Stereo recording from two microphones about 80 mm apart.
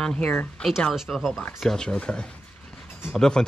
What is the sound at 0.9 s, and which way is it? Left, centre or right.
Speech, centre.